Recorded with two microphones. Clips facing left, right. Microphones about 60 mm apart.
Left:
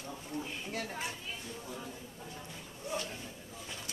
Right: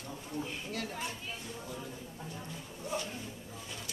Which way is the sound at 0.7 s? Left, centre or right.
Centre.